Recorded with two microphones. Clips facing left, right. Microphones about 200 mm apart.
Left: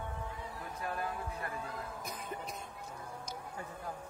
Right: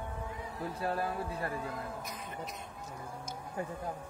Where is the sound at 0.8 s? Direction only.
30° right (ahead or behind).